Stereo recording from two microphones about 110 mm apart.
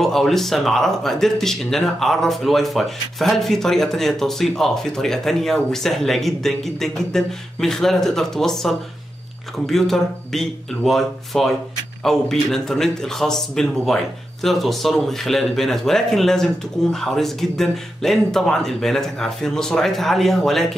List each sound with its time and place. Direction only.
0.0 s speech: 5° left (ahead or behind)